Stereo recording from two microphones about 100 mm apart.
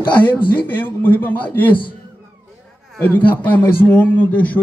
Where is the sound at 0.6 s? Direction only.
20° left (ahead or behind).